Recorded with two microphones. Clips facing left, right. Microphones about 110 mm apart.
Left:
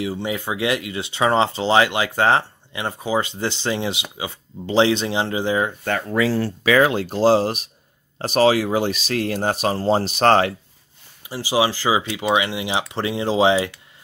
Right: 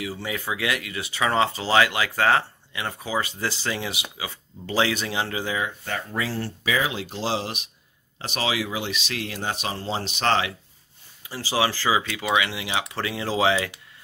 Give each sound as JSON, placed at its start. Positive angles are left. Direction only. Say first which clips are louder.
{"t": 0.0, "sound": "speech", "louder": "left 6 dB", "side_deg": 25}
{"t": 5.6, "sound": "speech", "louder": "left 7 dB", "side_deg": 50}
{"t": 5.9, "sound": "speech", "louder": "left 8 dB", "side_deg": 80}
{"t": 6.9, "sound": "speech", "louder": "left 11 dB", "side_deg": 45}
{"t": 11.2, "sound": "speech", "louder": "left 4 dB", "side_deg": 20}